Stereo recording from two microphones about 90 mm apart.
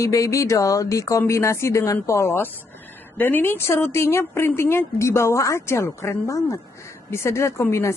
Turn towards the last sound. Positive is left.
turn(degrees=30)  # may be behind; listen again after turning